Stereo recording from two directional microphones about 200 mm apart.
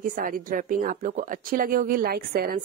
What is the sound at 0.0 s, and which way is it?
Speech, 45° right (ahead or behind).